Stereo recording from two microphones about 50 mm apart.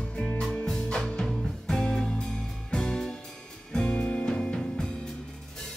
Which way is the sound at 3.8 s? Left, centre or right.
Left.